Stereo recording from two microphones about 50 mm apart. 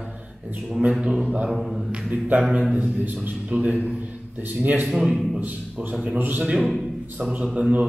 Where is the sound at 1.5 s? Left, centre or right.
Centre.